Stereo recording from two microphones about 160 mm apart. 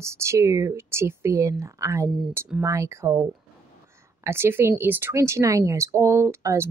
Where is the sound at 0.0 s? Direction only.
15° right (ahead or behind).